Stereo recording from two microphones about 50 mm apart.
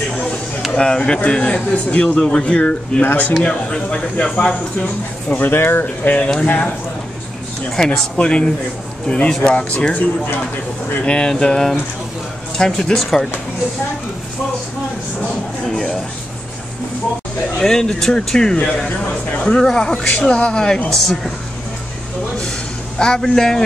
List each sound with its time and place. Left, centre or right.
0.7 s a man's voice: centre
3.0 s speech: left
3.4 s a man's voice: centre
5.3 s speech: left
6.4 s speech: left
7.7 s speech: centre
8.2 s a man's voice: left
9.9 s speech: left
11.1 s speech: centre
15.7 s a sound: centre
17.6 s speech: centre
22.9 s speech: centre